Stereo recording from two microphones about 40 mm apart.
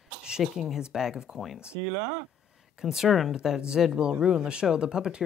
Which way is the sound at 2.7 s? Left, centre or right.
Centre.